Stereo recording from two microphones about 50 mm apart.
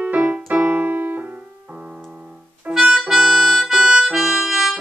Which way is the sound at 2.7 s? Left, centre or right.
Centre.